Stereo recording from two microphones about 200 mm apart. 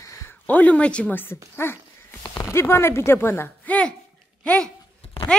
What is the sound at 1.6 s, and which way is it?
A woman's voice, 10° left (ahead or behind).